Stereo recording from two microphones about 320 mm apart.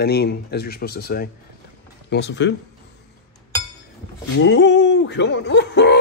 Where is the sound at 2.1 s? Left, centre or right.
Left.